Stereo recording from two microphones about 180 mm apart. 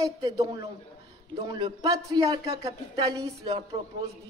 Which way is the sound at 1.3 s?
25° right (ahead or behind).